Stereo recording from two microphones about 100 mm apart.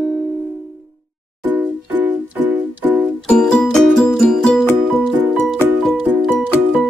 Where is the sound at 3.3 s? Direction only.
10° left (ahead or behind).